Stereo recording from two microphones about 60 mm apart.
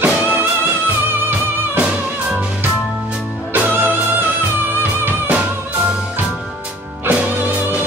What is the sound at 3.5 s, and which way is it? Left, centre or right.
Music, right.